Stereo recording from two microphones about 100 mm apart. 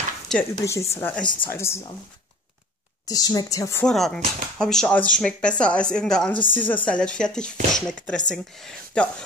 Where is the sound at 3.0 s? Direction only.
40° left (ahead or behind).